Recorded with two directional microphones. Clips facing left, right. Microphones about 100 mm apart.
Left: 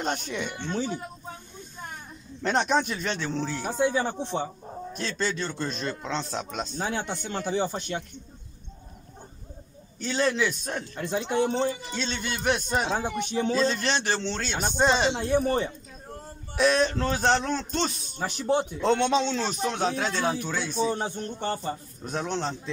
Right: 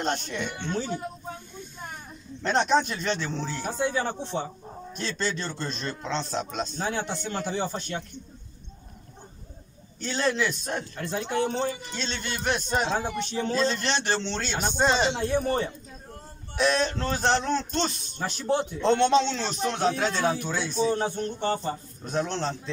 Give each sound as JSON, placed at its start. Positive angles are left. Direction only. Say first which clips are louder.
{"t": 0.0, "sound": "speech", "louder": "right 1 dB", "side_deg": 5}
{"t": 2.4, "sound": "a man's voice", "louder": "right 1 dB", "side_deg": 5}
{"t": 9.9, "sound": "a man's voice", "louder": "left 1 dB", "side_deg": 5}
{"t": 11.0, "sound": "a man's voice", "louder": "left 3 dB", "side_deg": 15}
{"t": 11.9, "sound": "a man's voice", "louder": "left 2 dB", "side_deg": 5}
{"t": 16.5, "sound": "a man's voice", "louder": "left 2 dB", "side_deg": 5}